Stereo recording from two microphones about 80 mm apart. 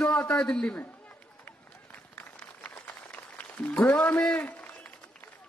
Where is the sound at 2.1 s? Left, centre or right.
Centre.